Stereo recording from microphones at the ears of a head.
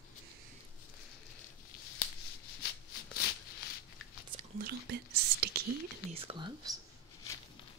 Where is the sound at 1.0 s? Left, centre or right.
Left.